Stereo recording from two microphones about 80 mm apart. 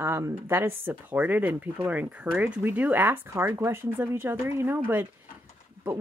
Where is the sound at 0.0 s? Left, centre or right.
Right.